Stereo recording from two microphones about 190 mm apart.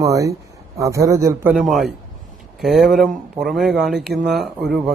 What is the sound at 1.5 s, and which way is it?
Speech, centre (ahead or behind).